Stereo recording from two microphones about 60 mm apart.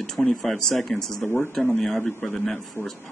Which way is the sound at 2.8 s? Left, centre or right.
Left.